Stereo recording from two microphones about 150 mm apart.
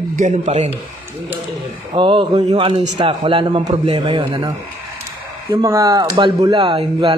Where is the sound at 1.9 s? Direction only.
35° right (ahead or behind).